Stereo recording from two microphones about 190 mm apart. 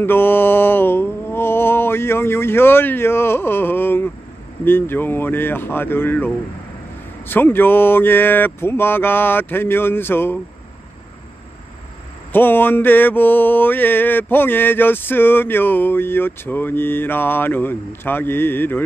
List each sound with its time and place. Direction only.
0.0 s mantra: 10° left (ahead or behind)
12.3 s mantra: 10° left (ahead or behind)